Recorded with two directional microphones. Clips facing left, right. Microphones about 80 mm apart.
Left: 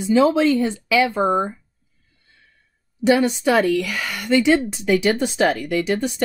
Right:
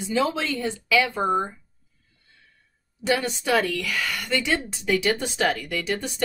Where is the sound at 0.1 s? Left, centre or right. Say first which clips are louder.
Left 9 dB; left.